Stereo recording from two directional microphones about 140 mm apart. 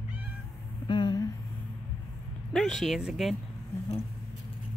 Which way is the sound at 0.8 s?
35° left (ahead or behind).